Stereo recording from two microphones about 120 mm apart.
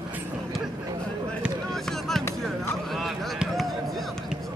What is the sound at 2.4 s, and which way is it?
Basketball bounce, centre (ahead or behind).